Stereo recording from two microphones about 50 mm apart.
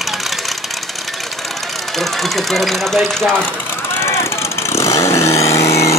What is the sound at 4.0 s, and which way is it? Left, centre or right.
Vehicle, left.